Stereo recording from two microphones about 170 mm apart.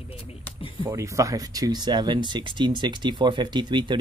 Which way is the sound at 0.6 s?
30° left (ahead or behind).